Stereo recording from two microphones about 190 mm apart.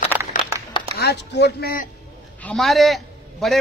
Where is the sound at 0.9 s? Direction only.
60° left (ahead or behind).